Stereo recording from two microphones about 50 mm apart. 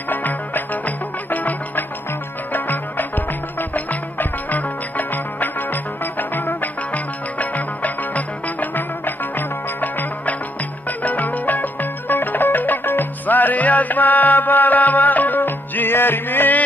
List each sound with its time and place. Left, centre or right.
0.1 s music: left